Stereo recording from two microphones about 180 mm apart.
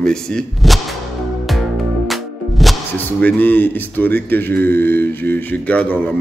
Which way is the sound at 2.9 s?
10° left (ahead or behind).